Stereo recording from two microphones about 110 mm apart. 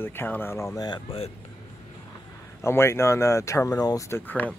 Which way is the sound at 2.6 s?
25° left (ahead or behind).